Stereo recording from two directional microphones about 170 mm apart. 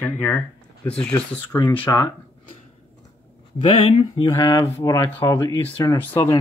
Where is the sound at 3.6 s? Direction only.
35° left (ahead or behind).